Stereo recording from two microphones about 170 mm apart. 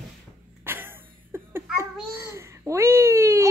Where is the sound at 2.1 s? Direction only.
15° right (ahead or behind).